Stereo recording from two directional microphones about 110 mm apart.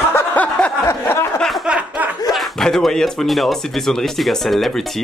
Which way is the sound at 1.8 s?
15° right (ahead or behind).